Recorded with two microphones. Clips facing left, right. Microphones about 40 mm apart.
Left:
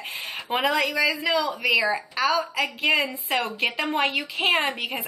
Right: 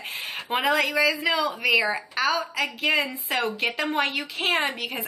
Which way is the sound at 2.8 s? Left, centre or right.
Left.